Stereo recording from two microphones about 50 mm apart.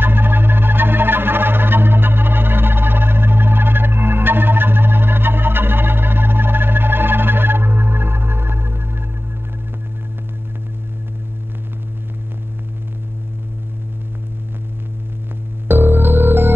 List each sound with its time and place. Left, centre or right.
0.0 s music: right
15.7 s music: right